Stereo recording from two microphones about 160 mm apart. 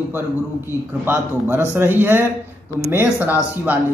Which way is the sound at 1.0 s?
15° right (ahead or behind).